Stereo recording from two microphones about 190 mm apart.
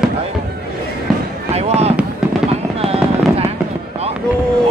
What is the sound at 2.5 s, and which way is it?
Fireworks, 30° right (ahead or behind).